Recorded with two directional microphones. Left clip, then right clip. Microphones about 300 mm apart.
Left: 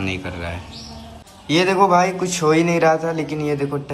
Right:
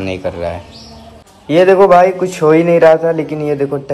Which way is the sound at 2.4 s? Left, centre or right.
Right.